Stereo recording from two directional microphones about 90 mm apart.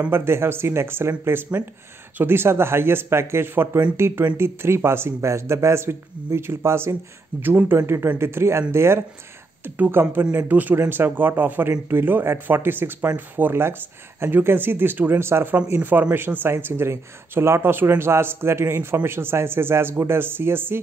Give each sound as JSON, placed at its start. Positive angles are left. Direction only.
{"t": 0.1, "sound": "speech", "side_deg": -30}